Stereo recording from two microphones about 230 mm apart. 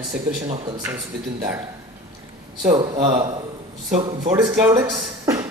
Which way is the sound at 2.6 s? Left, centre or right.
Right.